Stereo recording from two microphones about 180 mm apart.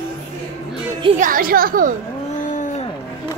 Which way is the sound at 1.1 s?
50° right (ahead or behind).